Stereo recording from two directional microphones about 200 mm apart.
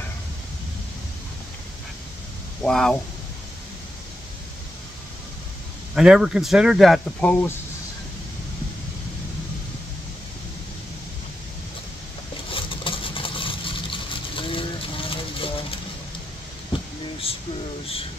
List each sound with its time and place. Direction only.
2.6 s speech: 5° left (ahead or behind)
5.9 s speech: centre (ahead or behind)
12.4 s vehicle: 25° left (ahead or behind)
16.7 s a sound: 25° left (ahead or behind)